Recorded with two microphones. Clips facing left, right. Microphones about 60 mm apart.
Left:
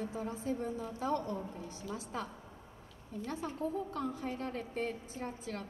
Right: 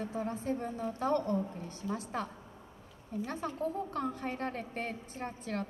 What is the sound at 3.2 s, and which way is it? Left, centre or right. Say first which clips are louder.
A woman's voice: right 1 dB; right.